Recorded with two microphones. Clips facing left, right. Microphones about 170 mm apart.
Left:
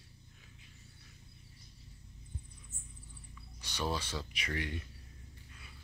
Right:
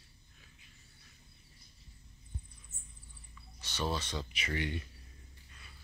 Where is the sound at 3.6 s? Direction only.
10° left (ahead or behind).